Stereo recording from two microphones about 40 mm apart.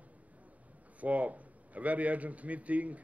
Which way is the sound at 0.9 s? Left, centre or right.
Right.